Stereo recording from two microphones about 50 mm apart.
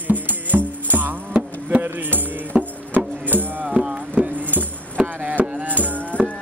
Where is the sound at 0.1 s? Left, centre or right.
Right.